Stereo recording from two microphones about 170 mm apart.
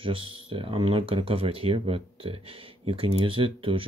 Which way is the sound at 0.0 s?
30° right (ahead or behind).